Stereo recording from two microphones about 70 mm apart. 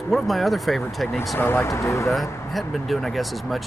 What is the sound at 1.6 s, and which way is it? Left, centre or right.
Speech, left.